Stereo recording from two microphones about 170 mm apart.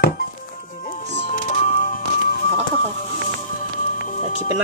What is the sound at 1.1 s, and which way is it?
Music, 40° left (ahead or behind).